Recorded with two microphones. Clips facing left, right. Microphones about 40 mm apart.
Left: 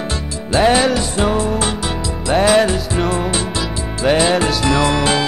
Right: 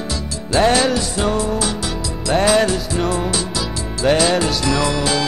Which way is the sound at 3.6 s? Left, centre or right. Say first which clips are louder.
Left 1 dB; left.